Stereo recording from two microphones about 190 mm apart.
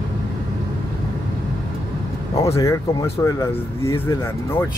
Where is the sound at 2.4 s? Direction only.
15° left (ahead or behind).